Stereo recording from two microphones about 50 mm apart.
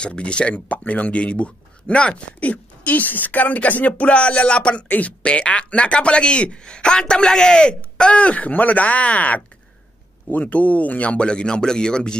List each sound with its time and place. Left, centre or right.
0.0 s speech: left
4.8 s speech: left
5.2 s speech: left